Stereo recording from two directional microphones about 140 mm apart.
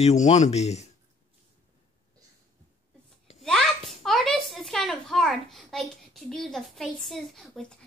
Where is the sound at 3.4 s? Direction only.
Centre (ahead or behind).